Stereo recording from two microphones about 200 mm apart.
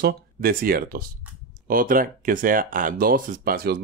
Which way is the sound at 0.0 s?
45° right (ahead or behind).